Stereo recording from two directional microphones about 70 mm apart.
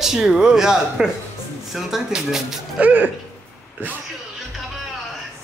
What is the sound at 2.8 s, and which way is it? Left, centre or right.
Speech, right.